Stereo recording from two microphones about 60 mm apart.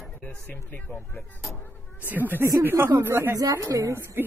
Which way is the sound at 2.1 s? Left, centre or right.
Right.